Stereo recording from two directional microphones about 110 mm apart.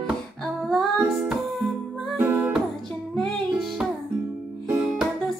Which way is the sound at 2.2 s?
15° right (ahead or behind).